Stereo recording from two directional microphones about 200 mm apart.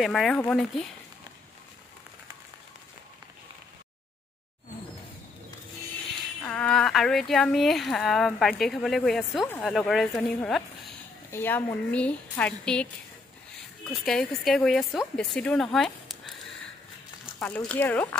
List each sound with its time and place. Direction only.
0.0 s speech: centre (ahead or behind)
6.4 s a woman's voice: 5° left (ahead or behind)
13.8 s speech: 5° left (ahead or behind)
17.4 s a woman's voice: 5° left (ahead or behind)